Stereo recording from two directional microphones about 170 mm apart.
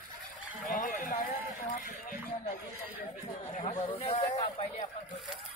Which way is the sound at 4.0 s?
35° left (ahead or behind).